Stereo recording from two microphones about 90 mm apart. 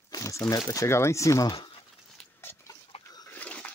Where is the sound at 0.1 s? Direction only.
35° left (ahead or behind).